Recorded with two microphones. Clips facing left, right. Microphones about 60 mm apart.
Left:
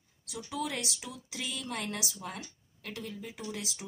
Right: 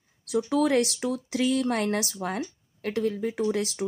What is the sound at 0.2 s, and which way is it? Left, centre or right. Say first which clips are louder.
Speech: right 13 dB; right.